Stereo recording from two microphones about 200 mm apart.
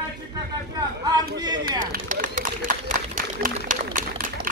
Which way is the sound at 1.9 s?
40° right (ahead or behind).